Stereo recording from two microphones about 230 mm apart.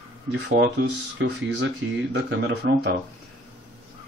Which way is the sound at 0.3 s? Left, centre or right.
Right.